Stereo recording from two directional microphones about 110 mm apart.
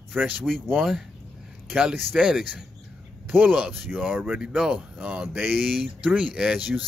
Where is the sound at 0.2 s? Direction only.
20° right (ahead or behind).